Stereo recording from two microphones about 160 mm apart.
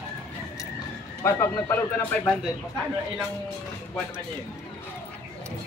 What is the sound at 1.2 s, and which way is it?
Speech, 15° left (ahead or behind).